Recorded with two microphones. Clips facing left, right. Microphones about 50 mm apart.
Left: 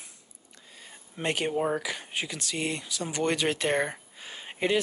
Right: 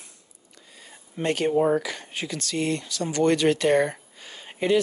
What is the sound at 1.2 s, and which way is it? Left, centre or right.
Speech, centre.